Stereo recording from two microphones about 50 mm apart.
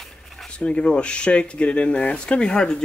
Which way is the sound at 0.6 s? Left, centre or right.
Left.